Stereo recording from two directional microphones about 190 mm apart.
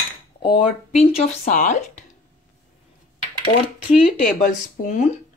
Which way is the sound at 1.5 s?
40° left (ahead or behind).